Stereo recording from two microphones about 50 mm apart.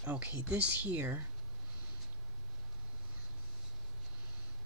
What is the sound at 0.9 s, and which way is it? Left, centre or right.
Speech, right.